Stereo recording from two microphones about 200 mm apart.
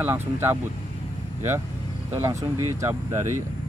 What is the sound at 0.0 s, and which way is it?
Speech, 10° right (ahead or behind).